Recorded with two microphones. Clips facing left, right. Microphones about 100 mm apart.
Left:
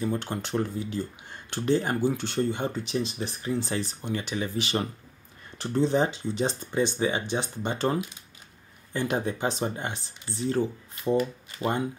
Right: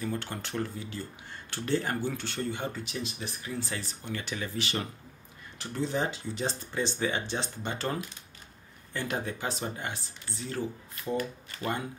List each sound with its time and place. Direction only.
0.0 s speech: 25° left (ahead or behind)
11.1 s speech: 20° left (ahead or behind)